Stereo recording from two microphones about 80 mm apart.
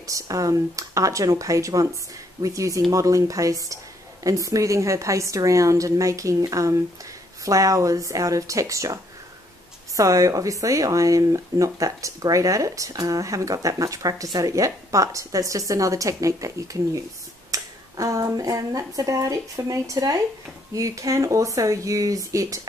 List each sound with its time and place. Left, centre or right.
0.0 s speech: right